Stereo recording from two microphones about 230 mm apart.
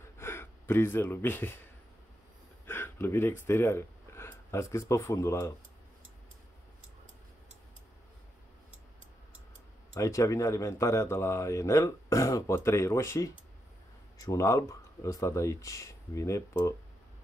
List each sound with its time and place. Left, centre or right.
0.2 s speech: centre
2.6 s speech: centre
9.9 s a man's voice: centre